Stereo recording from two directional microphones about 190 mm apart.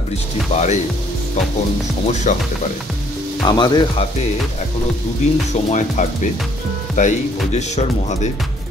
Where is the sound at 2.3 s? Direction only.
40° left (ahead or behind).